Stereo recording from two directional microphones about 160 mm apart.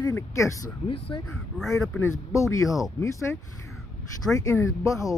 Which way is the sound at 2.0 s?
20° left (ahead or behind).